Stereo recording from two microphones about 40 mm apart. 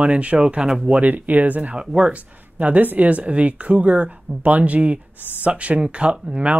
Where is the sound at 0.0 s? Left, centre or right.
Right.